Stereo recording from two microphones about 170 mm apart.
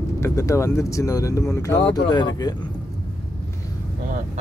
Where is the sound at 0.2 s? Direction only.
15° left (ahead or behind).